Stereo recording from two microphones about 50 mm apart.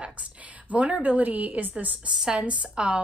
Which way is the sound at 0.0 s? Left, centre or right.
Right.